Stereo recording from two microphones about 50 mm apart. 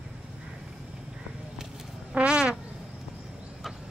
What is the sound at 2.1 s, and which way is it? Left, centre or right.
Fart, right.